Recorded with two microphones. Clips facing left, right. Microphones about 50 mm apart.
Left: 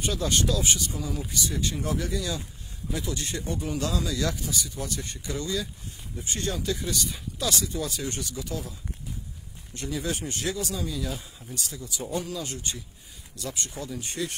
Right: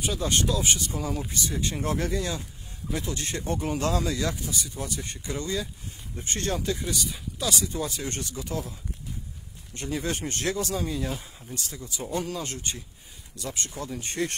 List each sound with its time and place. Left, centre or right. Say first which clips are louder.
0.2 s speech: right 1 dB; right
4.2 s speech: left 1 dB; right
6.1 s speech: right 2 dB; right
6.9 s speech: even; centre
7.6 s speech: even; right
9.8 s speech: right 1 dB; right